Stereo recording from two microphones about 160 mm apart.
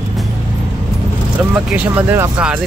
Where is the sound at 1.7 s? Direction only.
10° right (ahead or behind).